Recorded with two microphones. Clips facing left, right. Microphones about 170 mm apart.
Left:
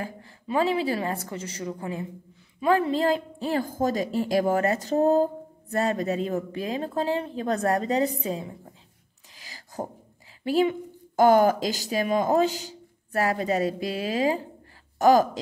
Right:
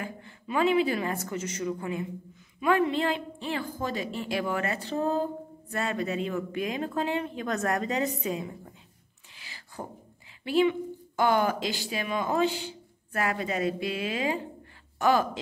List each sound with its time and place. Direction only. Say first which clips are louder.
0.0 s a woman's voice: left 3 dB; 35° left (ahead or behind)
9.3 s a sound: left 3 dB; 40° left (ahead or behind)
10.4 s a woman's voice: left 1 dB; 40° left (ahead or behind)